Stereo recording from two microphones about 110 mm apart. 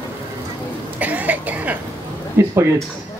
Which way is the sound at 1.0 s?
15° right (ahead or behind).